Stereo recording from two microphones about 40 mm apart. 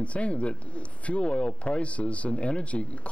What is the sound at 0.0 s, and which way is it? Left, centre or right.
Speech, left.